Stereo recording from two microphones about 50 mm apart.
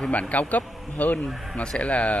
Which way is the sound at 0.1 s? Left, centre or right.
Left.